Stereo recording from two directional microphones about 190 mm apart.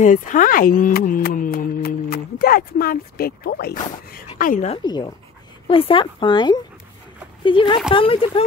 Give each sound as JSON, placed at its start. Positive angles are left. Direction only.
{"t": 0.0, "sound": "speech", "side_deg": 45}
{"t": 4.6, "sound": "speech", "side_deg": 25}